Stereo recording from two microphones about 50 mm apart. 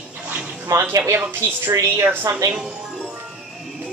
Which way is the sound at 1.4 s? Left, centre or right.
Right.